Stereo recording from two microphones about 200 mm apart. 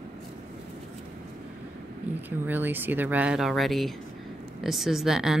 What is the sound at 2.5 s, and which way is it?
Speech, 10° right (ahead or behind).